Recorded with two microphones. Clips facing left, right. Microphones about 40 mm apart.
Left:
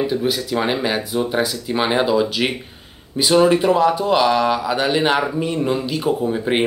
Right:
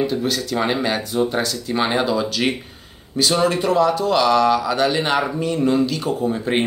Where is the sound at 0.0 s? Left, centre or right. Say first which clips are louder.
Left 1 dB; centre.